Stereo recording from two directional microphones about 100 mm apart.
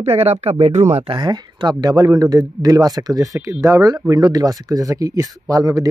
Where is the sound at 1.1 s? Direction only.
45° right (ahead or behind).